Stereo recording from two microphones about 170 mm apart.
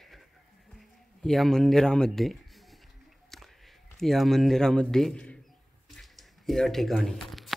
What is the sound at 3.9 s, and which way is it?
Speech, centre (ahead or behind).